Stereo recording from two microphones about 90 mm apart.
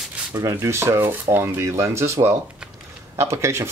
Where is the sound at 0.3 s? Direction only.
35° right (ahead or behind).